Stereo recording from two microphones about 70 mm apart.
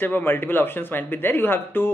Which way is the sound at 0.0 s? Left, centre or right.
Left.